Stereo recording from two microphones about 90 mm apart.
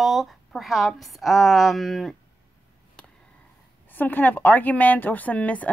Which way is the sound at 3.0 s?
10° left (ahead or behind).